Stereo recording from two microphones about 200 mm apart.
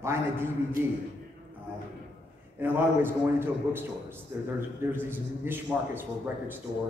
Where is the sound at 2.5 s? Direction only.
10° right (ahead or behind).